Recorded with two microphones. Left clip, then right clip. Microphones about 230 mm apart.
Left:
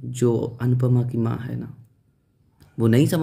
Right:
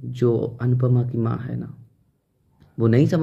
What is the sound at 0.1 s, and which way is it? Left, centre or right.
Speech, centre.